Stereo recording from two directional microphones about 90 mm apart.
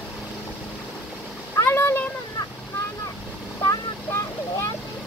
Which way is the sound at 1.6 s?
30° left (ahead or behind).